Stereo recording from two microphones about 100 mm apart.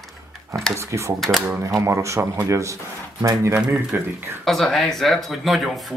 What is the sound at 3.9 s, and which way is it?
Speech, 20° right (ahead or behind).